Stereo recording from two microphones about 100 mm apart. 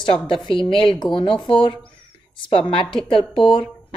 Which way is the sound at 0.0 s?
60° left (ahead or behind).